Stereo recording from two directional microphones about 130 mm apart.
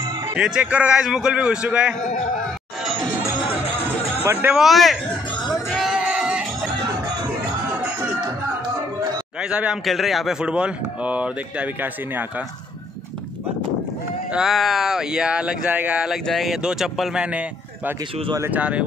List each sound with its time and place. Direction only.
0.3 s speech: 10° right (ahead or behind)
4.2 s a man's voice: 15° right (ahead or behind)
4.6 s speech: centre (ahead or behind)
5.5 s sheep: centre (ahead or behind)
9.4 s speech: 5° right (ahead or behind)
14.3 s speech: 5° right (ahead or behind)